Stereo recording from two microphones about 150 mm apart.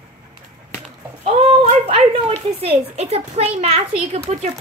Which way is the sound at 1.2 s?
45° right (ahead or behind).